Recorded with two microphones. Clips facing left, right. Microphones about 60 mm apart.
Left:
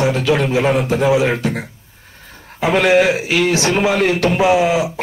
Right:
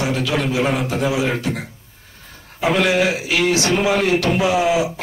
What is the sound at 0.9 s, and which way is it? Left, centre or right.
Speech, left.